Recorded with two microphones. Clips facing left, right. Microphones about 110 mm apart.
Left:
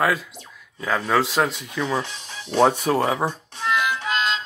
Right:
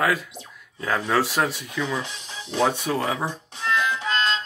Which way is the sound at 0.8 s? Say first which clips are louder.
Left 1 dB; centre (ahead or behind).